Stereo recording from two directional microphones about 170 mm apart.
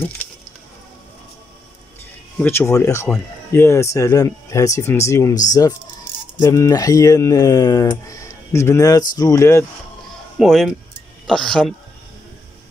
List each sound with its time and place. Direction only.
2.3 s speech: 10° left (ahead or behind)
10.4 s speech: centre (ahead or behind)